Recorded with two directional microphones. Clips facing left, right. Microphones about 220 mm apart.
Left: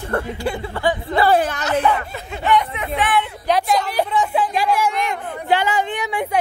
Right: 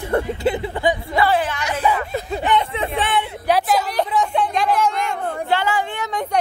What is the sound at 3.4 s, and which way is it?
A woman's voice, 5° right (ahead or behind).